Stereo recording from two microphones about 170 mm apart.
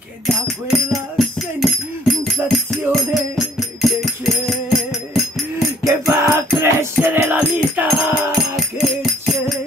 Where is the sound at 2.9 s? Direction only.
Centre (ahead or behind).